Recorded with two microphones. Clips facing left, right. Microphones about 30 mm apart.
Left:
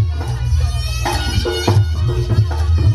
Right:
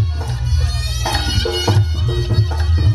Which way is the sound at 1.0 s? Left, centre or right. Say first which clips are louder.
Even; left.